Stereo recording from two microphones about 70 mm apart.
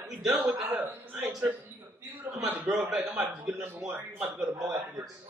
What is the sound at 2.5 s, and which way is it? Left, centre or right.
A man's voice, centre.